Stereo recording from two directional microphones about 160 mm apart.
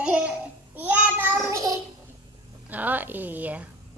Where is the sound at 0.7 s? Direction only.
10° right (ahead or behind).